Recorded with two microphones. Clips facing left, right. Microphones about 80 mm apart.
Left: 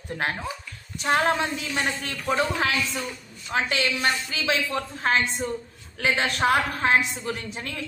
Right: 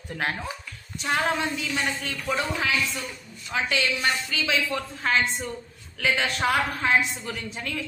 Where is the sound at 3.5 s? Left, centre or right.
Left.